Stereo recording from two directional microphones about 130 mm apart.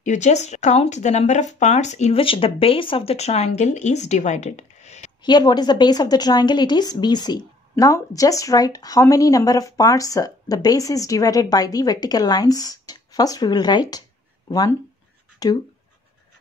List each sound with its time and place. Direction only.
0.0 s speech: 65° left (ahead or behind)
5.2 s a woman's voice: 35° left (ahead or behind)
15.3 s a sound: 30° left (ahead or behind)